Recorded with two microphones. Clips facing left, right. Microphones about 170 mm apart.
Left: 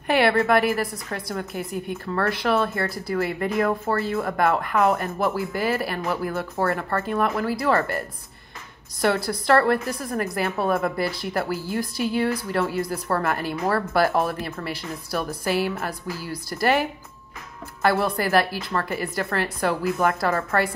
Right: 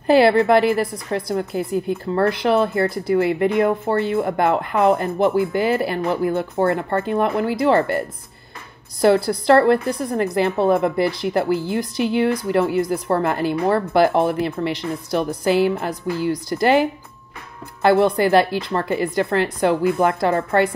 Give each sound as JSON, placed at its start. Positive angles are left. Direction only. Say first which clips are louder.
{"t": 0.0, "sound": "speech", "louder": "right 6 dB", "side_deg": -30}
{"t": 9.0, "sound": "speech", "louder": "right 7 dB", "side_deg": -25}
{"t": 17.8, "sound": "speech", "louder": "right 7 dB", "side_deg": -25}